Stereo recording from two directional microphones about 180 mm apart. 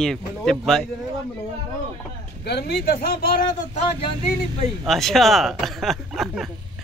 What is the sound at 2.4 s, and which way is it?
Speech, 65° left (ahead or behind).